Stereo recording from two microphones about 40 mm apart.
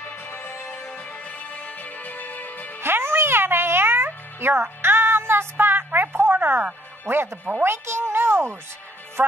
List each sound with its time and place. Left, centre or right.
0.0 s music: left
0.7 s music: centre
0.9 s music: left
2.8 s music: right
5.9 s a sound: right
7.1 s speech: right
7.6 s a child's voice: right